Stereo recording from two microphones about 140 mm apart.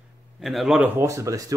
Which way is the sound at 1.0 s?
20° right (ahead or behind).